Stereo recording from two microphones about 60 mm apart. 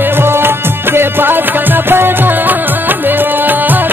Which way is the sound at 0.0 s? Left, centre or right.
Right.